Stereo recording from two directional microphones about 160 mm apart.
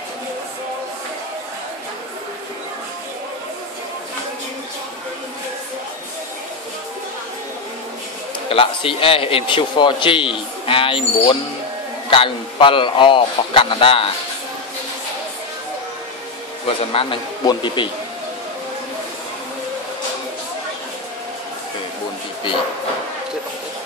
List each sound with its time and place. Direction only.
8.5 s speech: 35° left (ahead or behind)
16.6 s speech: 35° left (ahead or behind)